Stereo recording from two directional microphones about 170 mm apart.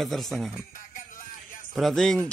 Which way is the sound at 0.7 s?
55° left (ahead or behind).